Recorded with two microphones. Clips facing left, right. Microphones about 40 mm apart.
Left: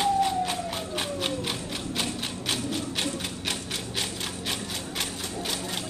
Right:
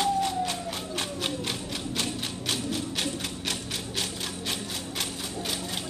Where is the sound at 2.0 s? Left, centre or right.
Centre.